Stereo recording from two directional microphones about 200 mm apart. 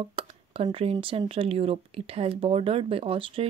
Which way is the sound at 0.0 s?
30° right (ahead or behind).